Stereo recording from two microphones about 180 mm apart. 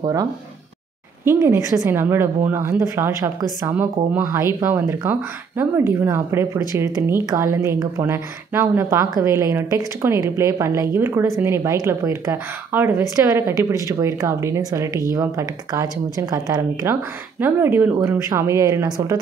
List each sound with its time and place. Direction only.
0.0 s a woman's voice: 20° right (ahead or behind)